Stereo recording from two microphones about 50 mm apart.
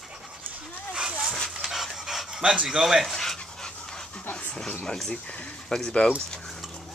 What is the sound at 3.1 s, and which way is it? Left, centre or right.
Dog, centre.